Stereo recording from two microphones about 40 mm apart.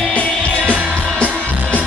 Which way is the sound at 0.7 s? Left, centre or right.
Left.